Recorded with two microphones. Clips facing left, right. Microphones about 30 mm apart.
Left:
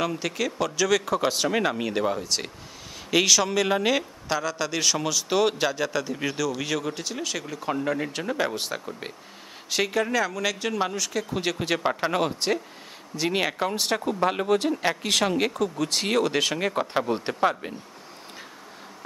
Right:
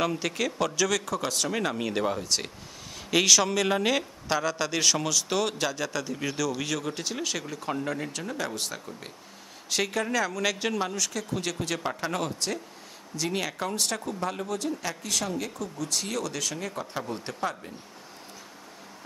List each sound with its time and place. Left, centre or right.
0.0 s speech: centre; by 9.1 s left
9.7 s speech: centre
10.8 s speech: centre; by 15.0 s left
15.0 s speech: left